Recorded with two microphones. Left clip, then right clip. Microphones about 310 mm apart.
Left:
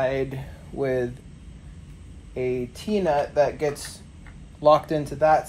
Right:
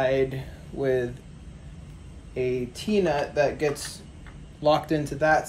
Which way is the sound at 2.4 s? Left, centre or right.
Centre.